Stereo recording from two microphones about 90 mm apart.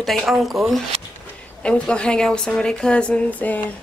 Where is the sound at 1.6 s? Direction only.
10° left (ahead or behind).